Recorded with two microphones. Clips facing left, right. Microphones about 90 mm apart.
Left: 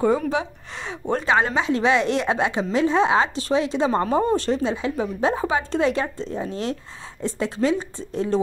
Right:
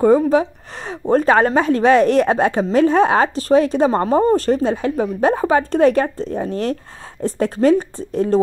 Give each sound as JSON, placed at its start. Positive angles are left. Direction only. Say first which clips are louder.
{"t": 0.0, "sound": "a woman's voice", "louder": "right 8 dB", "side_deg": -40}